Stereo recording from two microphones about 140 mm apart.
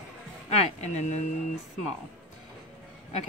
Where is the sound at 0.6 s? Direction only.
55° left (ahead or behind).